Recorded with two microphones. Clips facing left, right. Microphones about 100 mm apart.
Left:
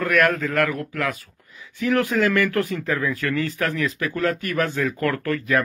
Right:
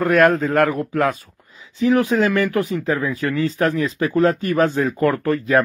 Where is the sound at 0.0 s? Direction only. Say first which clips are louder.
Right 5 dB; 25° right (ahead or behind).